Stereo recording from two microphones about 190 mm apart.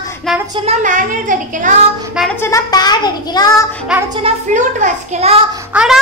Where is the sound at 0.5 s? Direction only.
35° right (ahead or behind).